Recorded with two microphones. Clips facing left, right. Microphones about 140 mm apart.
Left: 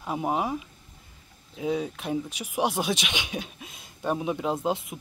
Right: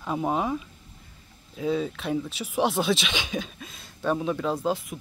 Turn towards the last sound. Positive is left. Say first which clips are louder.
# right 1 dB
turn(degrees=20)  # may be behind; listen again after turning